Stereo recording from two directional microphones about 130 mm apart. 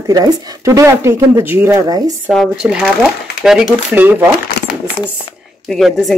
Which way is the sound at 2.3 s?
5° right (ahead or behind).